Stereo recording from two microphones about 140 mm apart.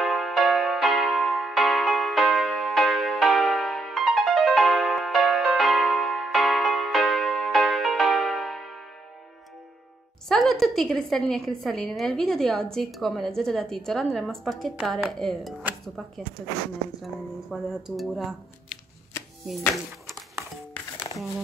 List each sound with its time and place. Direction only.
0.0 s music: centre (ahead or behind)
10.2 s a woman's voice: 5° left (ahead or behind)
17.0 s a woman's voice: centre (ahead or behind)